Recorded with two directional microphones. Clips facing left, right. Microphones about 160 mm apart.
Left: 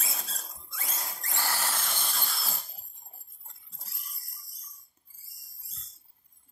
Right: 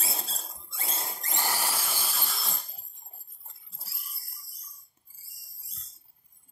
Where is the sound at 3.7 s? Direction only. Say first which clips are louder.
Right 2 dB; 5° right (ahead or behind).